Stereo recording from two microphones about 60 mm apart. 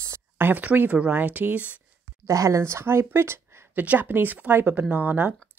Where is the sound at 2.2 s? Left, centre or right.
Right.